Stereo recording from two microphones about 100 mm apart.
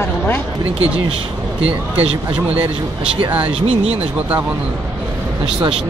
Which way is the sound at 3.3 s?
15° right (ahead or behind).